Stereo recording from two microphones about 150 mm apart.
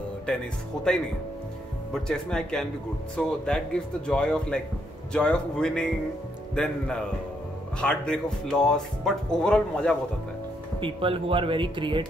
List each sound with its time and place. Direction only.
2.0 s speech: 5° left (ahead or behind)
10.8 s speech: 35° right (ahead or behind)